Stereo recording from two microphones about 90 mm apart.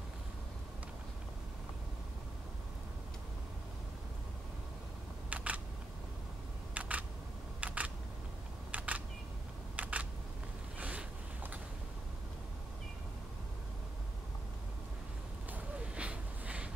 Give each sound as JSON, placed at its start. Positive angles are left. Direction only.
{"t": 5.3, "sound": "single-lens reflex camera", "side_deg": -15}
{"t": 6.7, "sound": "single-lens reflex camera", "side_deg": -15}
{"t": 7.6, "sound": "camera", "side_deg": -15}
{"t": 8.7, "sound": "single-lens reflex camera", "side_deg": -15}
{"t": 9.8, "sound": "a sound", "side_deg": -15}
{"t": 15.5, "sound": "a sound", "side_deg": -15}